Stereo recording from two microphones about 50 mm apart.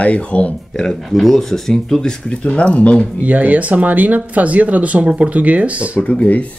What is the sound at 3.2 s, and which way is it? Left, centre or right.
Speech, right.